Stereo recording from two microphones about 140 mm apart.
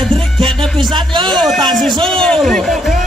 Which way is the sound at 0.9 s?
35° right (ahead or behind).